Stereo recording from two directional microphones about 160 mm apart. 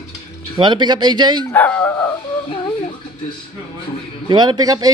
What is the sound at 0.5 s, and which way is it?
Speech, 30° right (ahead or behind).